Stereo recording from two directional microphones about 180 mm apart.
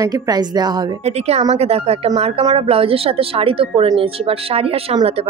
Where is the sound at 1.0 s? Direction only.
35° right (ahead or behind).